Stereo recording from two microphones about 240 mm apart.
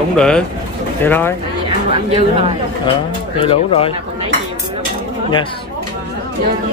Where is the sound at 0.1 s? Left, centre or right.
Centre.